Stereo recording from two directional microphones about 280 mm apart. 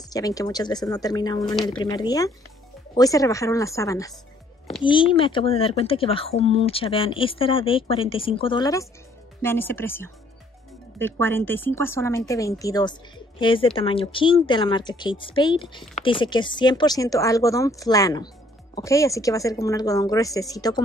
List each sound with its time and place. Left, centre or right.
0.1 s speech: centre